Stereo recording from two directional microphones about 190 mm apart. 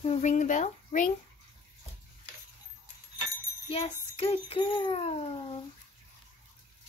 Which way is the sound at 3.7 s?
30° left (ahead or behind).